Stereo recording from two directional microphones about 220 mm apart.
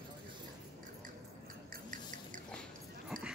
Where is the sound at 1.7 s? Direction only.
35° right (ahead or behind).